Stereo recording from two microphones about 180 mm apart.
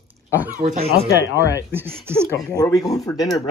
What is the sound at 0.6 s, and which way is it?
Speech, 55° right (ahead or behind).